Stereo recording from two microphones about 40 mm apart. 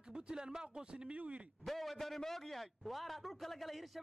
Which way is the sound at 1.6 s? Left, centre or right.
Centre.